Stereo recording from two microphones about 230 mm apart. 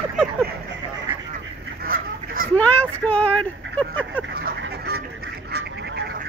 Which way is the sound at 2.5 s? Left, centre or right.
Centre.